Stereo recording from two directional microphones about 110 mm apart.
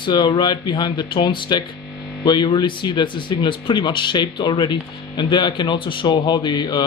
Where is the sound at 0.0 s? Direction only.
45° left (ahead or behind).